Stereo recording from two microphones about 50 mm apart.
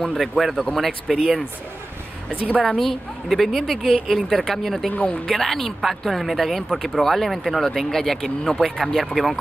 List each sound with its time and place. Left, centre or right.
0.0 s speech: centre
0.4 s speech: centre
2.6 s speech: centre
4.9 s speech: left
5.2 s speech: centre